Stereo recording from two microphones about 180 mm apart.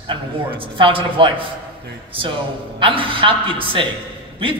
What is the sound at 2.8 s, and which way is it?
A man's voice, 30° right (ahead or behind).